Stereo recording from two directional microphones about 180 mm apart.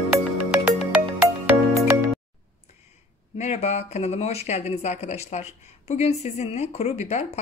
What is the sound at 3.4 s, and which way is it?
Speech, 40° left (ahead or behind).